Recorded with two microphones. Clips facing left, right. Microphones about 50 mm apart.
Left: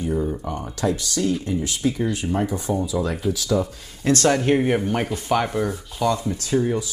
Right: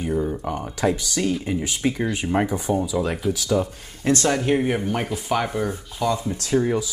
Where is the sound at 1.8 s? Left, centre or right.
Right.